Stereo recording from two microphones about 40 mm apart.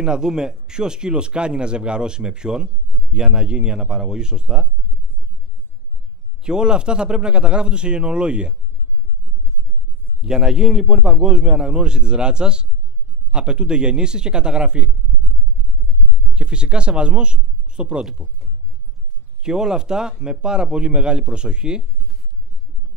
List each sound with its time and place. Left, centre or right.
0.0 s a man's voice: centre
6.4 s a man's voice: right
10.2 s a man's voice: centre
16.3 s a man's voice: right
19.4 s a man's voice: centre